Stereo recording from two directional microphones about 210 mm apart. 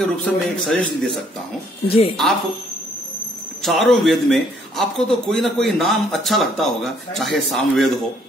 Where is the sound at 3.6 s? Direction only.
Centre (ahead or behind).